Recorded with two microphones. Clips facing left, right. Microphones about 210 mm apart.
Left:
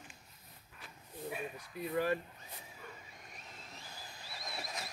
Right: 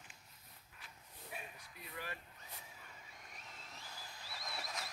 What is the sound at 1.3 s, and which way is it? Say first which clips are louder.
Speech: left 8 dB; 65° left (ahead or behind).